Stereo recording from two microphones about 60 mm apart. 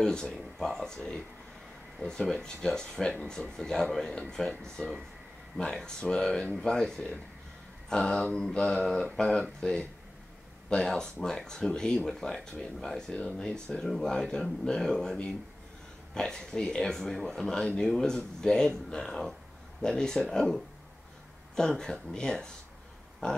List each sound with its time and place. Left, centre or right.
0.0 s speech: centre
2.2 s speech: centre